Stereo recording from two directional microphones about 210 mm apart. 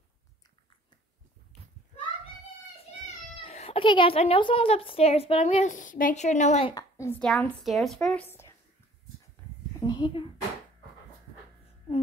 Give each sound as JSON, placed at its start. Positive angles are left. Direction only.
{"t": 3.4, "sound": "a woman's voice", "side_deg": 30}
{"t": 6.7, "sound": "a woman's voice", "side_deg": 15}
{"t": 9.8, "sound": "a woman's voice", "side_deg": 20}